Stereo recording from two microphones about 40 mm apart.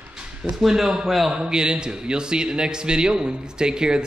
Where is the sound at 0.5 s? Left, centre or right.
Centre.